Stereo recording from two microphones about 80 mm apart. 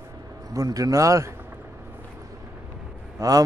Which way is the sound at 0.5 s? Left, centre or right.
Right.